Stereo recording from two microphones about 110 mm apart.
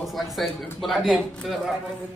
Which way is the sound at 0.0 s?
Centre (ahead or behind).